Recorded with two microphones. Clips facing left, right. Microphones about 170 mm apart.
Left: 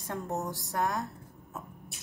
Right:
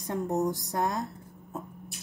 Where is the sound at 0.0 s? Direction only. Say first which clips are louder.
Right 6 dB; 15° right (ahead or behind).